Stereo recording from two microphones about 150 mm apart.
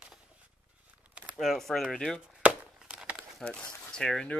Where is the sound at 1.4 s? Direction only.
Centre (ahead or behind).